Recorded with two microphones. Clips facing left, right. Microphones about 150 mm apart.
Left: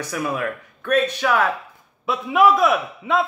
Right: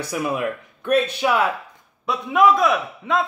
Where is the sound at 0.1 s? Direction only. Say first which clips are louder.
Right 2 dB; 10° right (ahead or behind).